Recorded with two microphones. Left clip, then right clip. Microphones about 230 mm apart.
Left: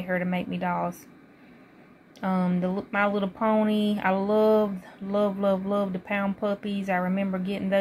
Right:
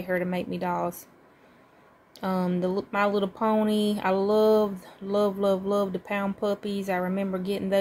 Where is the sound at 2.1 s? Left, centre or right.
Centre.